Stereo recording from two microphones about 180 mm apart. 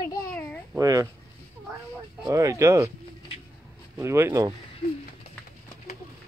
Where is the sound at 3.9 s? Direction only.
15° right (ahead or behind).